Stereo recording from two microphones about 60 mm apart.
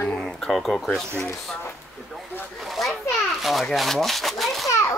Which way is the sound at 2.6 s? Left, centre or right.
Centre.